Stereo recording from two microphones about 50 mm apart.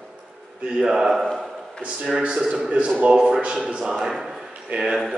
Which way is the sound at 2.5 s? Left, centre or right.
Right.